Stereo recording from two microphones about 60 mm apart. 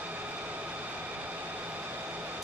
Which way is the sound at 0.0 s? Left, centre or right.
Right.